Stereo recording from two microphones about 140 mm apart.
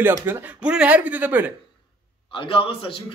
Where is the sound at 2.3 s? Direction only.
35° left (ahead or behind).